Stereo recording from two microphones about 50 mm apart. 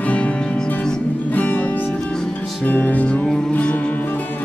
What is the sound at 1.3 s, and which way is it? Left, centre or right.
Music, left.